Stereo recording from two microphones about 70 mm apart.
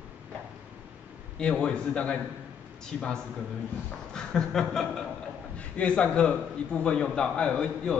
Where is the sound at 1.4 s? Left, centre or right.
Centre.